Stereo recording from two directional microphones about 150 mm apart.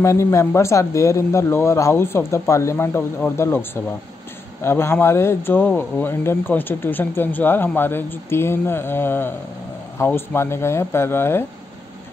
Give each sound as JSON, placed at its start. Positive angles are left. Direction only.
{"t": 0.0, "sound": "speech", "side_deg": 20}